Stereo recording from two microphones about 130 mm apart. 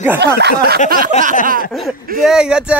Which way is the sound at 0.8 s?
90° right.